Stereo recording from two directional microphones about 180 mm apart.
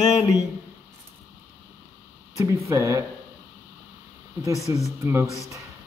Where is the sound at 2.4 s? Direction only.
15° right (ahead or behind).